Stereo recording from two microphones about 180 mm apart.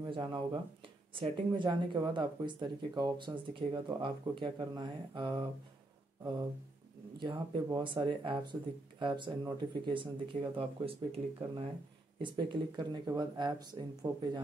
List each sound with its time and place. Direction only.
0.0 s speech: 25° right (ahead or behind)
7.2 s speech: 25° right (ahead or behind)